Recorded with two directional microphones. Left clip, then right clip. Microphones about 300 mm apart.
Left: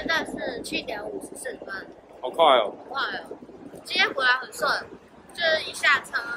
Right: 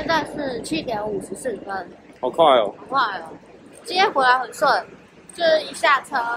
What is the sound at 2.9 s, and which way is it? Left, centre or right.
A woman's voice, centre.